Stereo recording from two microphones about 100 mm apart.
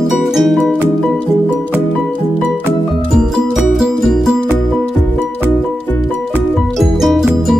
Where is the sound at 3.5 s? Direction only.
5° right (ahead or behind).